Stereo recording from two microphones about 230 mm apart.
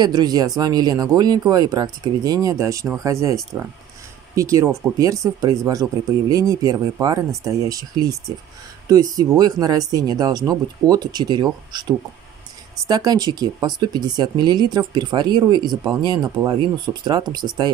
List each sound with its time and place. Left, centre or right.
0.0 s speech: centre
4.4 s speech: centre